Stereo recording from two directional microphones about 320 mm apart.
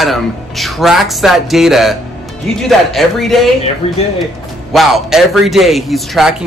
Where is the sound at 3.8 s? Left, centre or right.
Centre.